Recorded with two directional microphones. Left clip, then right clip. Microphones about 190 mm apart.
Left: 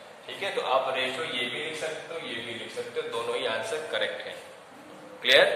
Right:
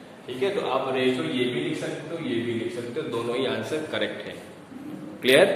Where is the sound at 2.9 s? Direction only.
5° right (ahead or behind).